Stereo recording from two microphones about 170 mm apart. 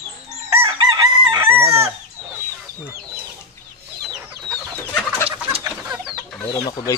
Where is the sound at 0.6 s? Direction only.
25° right (ahead or behind).